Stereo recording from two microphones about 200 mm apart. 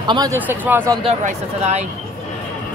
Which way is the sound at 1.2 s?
35° right (ahead or behind).